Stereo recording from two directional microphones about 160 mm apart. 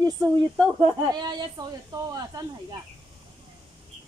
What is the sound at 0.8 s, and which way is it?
Speech, 25° right (ahead or behind).